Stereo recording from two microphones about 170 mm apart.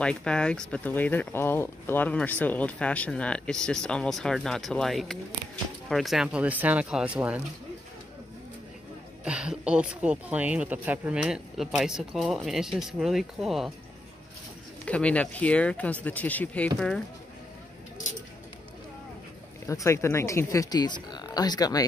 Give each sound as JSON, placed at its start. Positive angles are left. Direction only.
{"t": 0.0, "sound": "speech", "side_deg": 5}
{"t": 9.2, "sound": "speech", "side_deg": -5}
{"t": 14.9, "sound": "speech", "side_deg": 5}
{"t": 19.7, "sound": "speech", "side_deg": 15}